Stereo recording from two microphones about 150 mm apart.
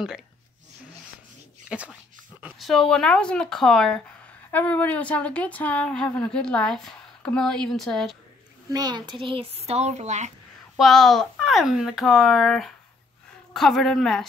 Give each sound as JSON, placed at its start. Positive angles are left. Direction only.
{"t": 1.7, "sound": "speech", "side_deg": -5}
{"t": 8.7, "sound": "speech", "side_deg": -30}
{"t": 10.8, "sound": "speech", "side_deg": 0}